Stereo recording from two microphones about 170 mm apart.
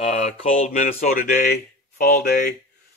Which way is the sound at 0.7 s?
55° left (ahead or behind).